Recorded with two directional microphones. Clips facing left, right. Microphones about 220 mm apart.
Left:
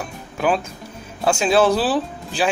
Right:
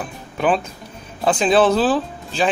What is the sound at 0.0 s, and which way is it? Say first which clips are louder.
Music: right 1 dB; centre (ahead or behind).